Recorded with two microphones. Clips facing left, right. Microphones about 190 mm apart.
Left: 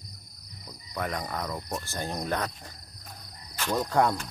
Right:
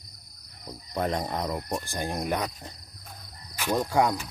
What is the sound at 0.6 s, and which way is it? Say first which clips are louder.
Cricket: right 5 dB; 30° right (ahead or behind).